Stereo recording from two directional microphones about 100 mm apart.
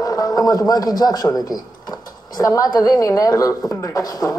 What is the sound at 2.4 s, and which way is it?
A woman's voice, 35° left (ahead or behind).